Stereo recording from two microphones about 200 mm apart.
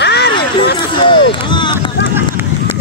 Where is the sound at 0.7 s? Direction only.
25° left (ahead or behind).